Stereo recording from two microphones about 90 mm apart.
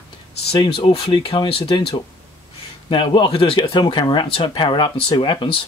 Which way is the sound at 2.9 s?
65° left (ahead or behind).